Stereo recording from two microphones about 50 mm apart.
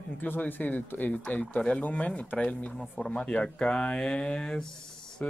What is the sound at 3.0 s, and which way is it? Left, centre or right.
Speech, centre.